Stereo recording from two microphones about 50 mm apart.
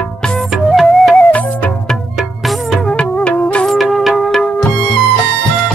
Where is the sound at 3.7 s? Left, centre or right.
Centre.